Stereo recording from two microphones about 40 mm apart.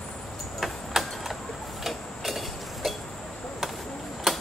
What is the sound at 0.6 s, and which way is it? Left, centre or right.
Vehicle, centre.